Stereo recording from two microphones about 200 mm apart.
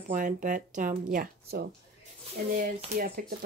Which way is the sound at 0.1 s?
40° right (ahead or behind).